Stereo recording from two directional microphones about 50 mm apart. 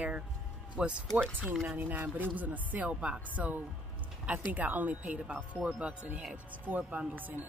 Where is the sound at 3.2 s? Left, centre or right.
Right.